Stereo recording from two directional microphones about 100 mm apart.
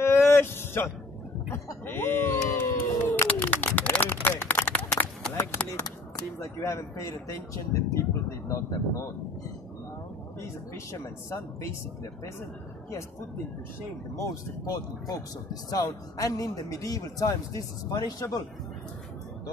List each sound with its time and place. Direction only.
0.0 s a sound: 25° left (ahead or behind)
6.4 s speech: 30° left (ahead or behind)
10.4 s speech: 30° left (ahead or behind)
14.1 s a man's voice: 30° left (ahead or behind)